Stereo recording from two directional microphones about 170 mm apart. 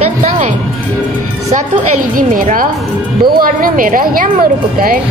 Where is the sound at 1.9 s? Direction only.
50° right (ahead or behind).